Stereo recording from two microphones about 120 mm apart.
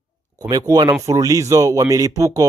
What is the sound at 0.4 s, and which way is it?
Speech, 30° right (ahead or behind).